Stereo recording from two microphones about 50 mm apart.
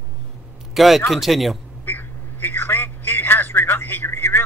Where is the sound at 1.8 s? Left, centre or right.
Left.